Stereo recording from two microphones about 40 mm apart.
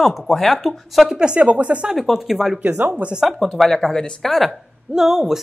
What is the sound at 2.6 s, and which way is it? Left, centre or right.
Speech, right.